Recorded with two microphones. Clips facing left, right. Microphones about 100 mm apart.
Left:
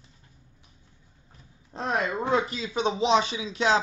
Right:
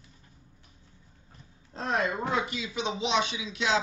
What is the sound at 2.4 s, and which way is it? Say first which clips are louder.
Speech: left 5 dB; 35° left (ahead or behind).